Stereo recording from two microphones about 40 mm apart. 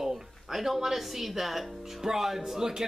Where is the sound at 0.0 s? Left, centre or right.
Centre.